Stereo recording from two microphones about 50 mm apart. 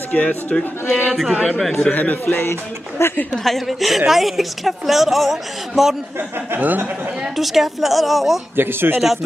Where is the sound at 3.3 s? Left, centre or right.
Centre.